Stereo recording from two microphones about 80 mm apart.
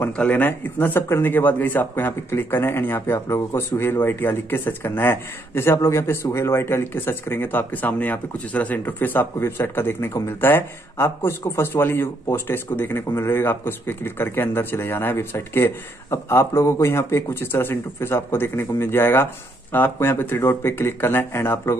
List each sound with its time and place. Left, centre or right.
0.0 s speech: centre